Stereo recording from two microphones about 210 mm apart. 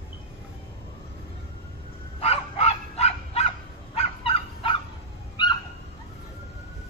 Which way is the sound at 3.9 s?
25° left (ahead or behind).